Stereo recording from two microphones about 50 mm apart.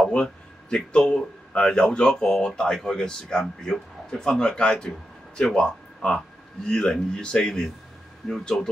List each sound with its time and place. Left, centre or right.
0.0 s a man's voice: centre